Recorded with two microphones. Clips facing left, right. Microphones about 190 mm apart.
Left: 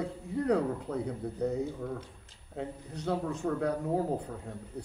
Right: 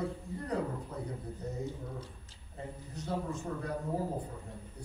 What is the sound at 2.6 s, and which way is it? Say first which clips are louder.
Speech: left 5 dB; 65° left (ahead or behind).